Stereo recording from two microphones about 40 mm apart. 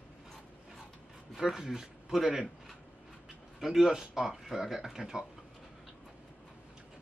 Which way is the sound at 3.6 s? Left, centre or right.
Centre.